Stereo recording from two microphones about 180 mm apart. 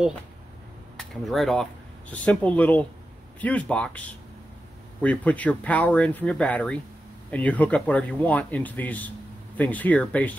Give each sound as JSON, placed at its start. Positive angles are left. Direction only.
{"t": 0.9, "sound": "speech", "side_deg": 0}